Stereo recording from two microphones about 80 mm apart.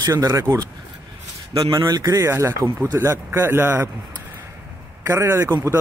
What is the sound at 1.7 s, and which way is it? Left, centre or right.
Speech, right.